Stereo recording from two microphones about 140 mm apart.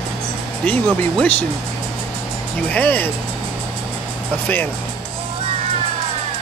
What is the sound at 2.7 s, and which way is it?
Speech, 10° left (ahead or behind).